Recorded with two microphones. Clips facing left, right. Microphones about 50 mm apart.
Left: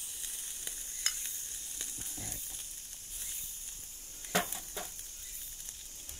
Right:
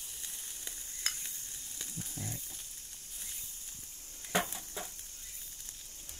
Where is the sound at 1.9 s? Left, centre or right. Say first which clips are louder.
Right 3 dB; centre.